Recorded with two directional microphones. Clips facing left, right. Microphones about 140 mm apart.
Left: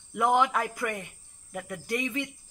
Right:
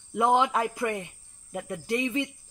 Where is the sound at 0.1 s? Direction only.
25° right (ahead or behind).